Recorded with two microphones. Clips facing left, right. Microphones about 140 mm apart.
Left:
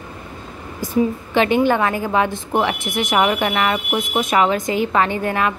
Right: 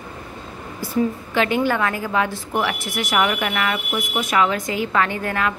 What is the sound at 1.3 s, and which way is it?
A woman's voice, 20° left (ahead or behind).